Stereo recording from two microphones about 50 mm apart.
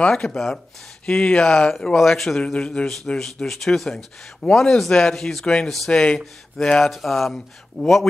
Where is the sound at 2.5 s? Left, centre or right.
Left.